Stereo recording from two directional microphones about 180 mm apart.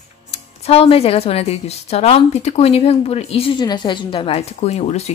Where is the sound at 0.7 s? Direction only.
35° left (ahead or behind).